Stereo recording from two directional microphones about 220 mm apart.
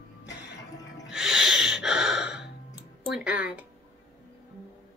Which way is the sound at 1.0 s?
Centre (ahead or behind).